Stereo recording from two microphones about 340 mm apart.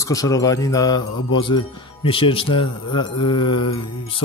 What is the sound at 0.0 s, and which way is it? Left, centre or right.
Speech, centre.